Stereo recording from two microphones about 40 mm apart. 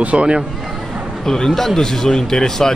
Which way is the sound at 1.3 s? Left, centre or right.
Centre.